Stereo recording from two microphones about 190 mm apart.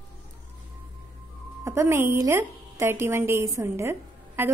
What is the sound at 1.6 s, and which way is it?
A woman's voice, 15° right (ahead or behind).